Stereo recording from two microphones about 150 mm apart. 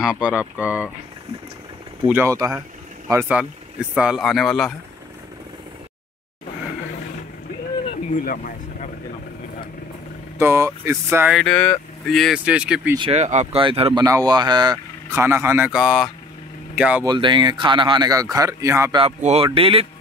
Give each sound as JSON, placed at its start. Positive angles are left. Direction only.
{"t": 0.0, "sound": "speech", "side_deg": -5}
{"t": 2.0, "sound": "speech", "side_deg": -15}
{"t": 2.3, "sound": "speech", "side_deg": -25}
{"t": 3.1, "sound": "speech", "side_deg": -15}
{"t": 8.1, "sound": "speech", "side_deg": 65}
{"t": 10.4, "sound": "speech", "side_deg": -15}
{"t": 11.3, "sound": "speech", "side_deg": 5}
{"t": 13.1, "sound": "speech", "side_deg": -50}
{"t": 13.6, "sound": "speech", "side_deg": -35}
{"t": 14.0, "sound": "speech", "side_deg": -25}
{"t": 15.1, "sound": "speech", "side_deg": -20}
{"t": 17.0, "sound": "speech", "side_deg": -30}
{"t": 18.9, "sound": "speech", "side_deg": -40}